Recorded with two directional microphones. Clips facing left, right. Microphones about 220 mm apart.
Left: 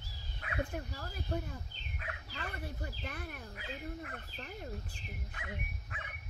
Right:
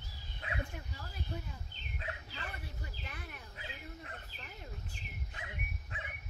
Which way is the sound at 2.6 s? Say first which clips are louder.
Left 6 dB; 50° left (ahead or behind).